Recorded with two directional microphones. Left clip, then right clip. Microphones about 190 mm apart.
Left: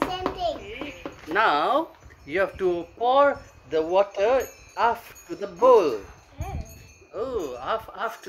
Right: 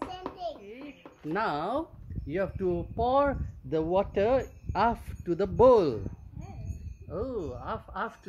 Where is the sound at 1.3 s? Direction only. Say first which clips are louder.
Left 9 dB; 25° right (ahead or behind).